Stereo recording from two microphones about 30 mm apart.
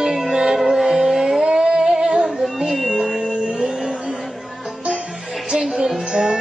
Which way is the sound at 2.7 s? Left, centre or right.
Centre.